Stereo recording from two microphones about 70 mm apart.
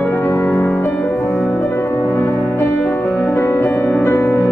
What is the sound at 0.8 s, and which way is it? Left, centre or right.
Music, left.